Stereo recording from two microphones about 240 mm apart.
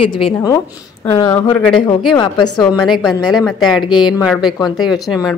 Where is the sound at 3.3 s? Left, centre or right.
Centre.